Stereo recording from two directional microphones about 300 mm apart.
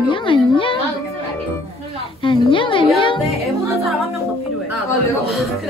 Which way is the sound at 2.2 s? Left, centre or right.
Centre.